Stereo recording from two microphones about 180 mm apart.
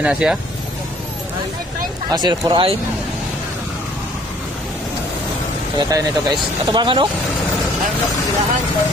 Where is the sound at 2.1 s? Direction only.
25° right (ahead or behind).